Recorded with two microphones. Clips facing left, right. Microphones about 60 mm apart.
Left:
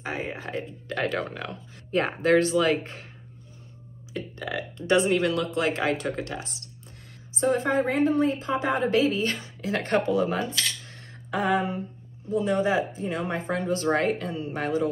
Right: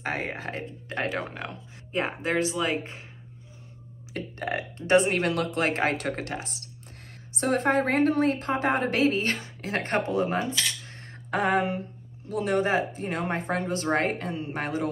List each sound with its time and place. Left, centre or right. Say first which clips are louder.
0.0 s a woman's voice: right 1 dB; right
0.8 s speech: left 2 dB; right
2.0 s speech: left 5 dB; centre
4.1 s a woman's voice: right 1 dB; right
7.3 s a woman's voice: even; right
11.2 s a sound: even; right
12.4 s a woman's voice: right 1 dB; right